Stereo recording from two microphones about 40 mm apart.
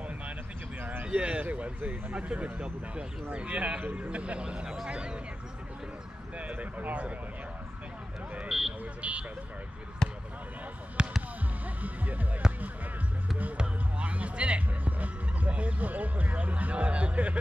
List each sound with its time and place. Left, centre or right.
1.0 s a sound: right
1.4 s a sound: right
2.1 s speech: right
6.3 s speech: right
8.5 s vehicle: centre
9.0 s speech: right
10.0 s basketball bounce: centre
11.0 s fireworks: right
11.6 s music: right
13.6 s music: right
14.9 s music: right
15.5 s speech: right